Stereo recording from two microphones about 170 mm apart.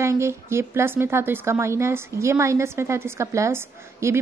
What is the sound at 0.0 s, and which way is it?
A woman's voice, 15° right (ahead or behind).